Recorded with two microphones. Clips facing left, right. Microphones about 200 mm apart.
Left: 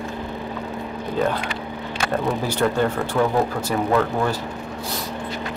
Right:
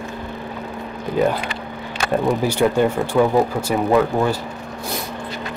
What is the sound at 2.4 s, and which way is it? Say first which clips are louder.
Speech: right 3 dB; 10° right (ahead or behind).